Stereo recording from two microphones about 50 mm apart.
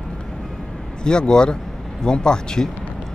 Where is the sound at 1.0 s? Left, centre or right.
Centre.